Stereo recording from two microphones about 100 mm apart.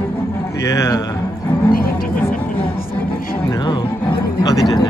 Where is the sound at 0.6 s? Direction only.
30° left (ahead or behind).